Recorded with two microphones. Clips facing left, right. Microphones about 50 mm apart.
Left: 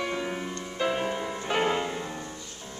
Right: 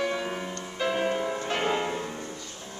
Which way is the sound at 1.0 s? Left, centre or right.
Centre.